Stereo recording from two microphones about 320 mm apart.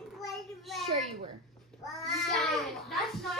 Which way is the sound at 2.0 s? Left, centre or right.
Centre.